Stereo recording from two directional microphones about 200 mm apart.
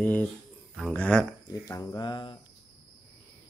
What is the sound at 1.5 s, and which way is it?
Speech, 15° left (ahead or behind).